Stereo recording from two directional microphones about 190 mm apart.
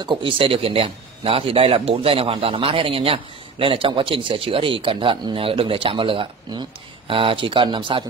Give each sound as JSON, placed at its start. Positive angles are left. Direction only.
{"t": 0.0, "sound": "a man's voice", "side_deg": -25}